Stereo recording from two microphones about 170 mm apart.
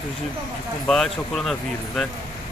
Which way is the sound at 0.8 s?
Centre (ahead or behind).